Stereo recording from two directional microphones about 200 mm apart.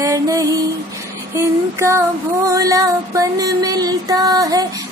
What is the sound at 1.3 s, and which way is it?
Female singing, 15° right (ahead or behind).